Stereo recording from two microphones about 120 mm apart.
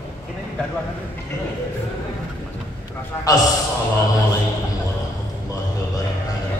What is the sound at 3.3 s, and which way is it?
Speech, 30° left (ahead or behind).